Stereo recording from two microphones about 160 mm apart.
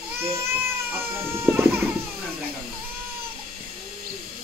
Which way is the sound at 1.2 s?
15° right (ahead or behind).